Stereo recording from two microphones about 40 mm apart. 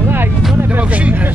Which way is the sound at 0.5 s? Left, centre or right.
Right.